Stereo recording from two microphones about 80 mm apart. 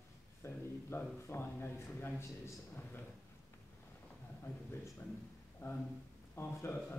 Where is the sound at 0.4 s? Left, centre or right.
Left.